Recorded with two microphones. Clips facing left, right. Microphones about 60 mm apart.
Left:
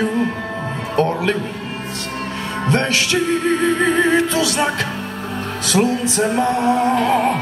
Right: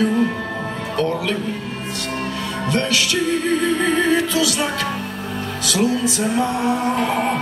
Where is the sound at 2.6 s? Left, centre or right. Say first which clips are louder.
Left 2 dB; left.